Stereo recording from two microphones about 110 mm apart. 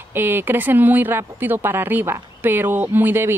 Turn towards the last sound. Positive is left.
turn(degrees=-20)  # may be behind; listen again after turning